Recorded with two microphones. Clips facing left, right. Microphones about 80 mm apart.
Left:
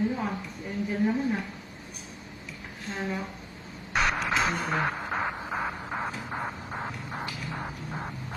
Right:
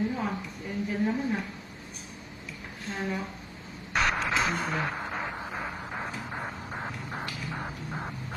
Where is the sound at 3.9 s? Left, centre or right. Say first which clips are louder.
Left 1 dB; centre.